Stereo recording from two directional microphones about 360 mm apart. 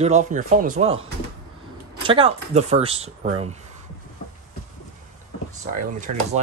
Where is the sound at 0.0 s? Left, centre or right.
Centre.